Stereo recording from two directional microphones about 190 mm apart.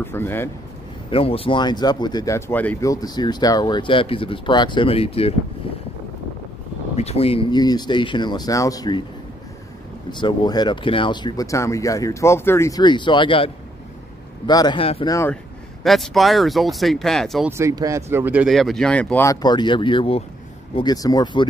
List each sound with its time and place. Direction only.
0.0 s speech: 10° left (ahead or behind)
1.1 s speech: 30° left (ahead or behind); by 2.9 s 10° left (ahead or behind)
2.9 s speech: 20° left (ahead or behind)
7.0 s speech: 35° left (ahead or behind)
10.2 s speech: 20° left (ahead or behind)
15.8 s speech: centre (ahead or behind)
17.5 s speech: 15° right (ahead or behind); by 19.3 s 10° left (ahead or behind)
19.4 s speech: 25° left (ahead or behind)